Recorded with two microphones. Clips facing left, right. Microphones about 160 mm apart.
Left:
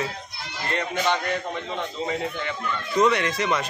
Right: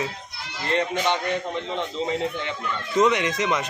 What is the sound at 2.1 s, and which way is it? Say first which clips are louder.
Speech: right 2 dB; 20° right (ahead or behind).